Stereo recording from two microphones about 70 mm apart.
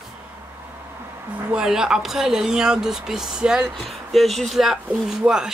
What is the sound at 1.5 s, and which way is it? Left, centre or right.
Speech, centre.